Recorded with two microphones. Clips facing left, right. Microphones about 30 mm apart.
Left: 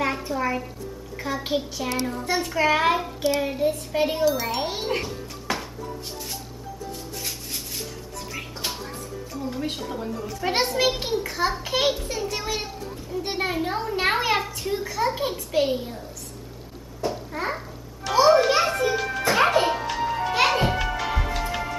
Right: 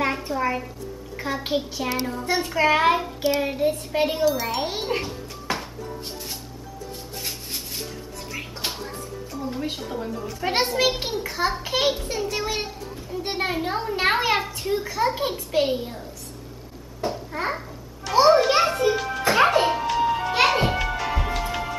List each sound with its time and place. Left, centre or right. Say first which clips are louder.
0.0 s a woman's voice: right 1 dB; centre
4.1 s a child's voice: even; centre
7.2 s rub: right 3 dB; centre
8.6 s music: right 1 dB; centre
10.4 s a child's voice: right 1 dB; centre
17.3 s babbling: right 1 dB; centre
18.1 s a sound: right 1 dB; right
18.5 s music: right 2 dB; centre